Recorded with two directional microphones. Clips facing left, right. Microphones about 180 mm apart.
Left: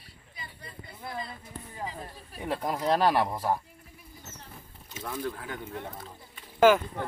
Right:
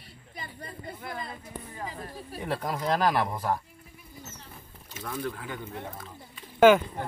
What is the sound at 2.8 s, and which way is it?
Speech, 30° left (ahead or behind).